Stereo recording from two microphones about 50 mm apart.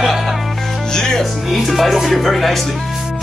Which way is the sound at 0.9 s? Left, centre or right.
Centre.